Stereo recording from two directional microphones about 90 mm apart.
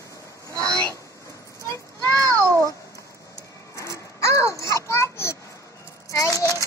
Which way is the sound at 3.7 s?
35° left (ahead or behind).